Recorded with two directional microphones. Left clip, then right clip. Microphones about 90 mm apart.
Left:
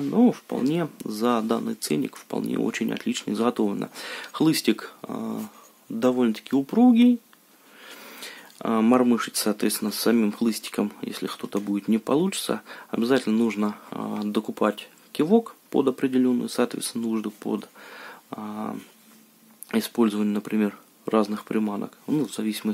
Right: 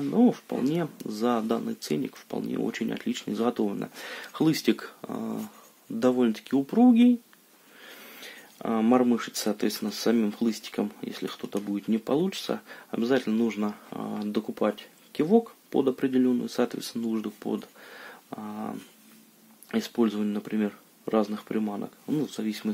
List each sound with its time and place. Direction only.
0.1 s speech: 30° left (ahead or behind)
2.9 s speech: 35° left (ahead or behind)
7.8 s speech: 40° left (ahead or behind)